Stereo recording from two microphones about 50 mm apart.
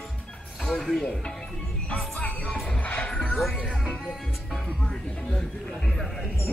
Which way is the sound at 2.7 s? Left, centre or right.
Left.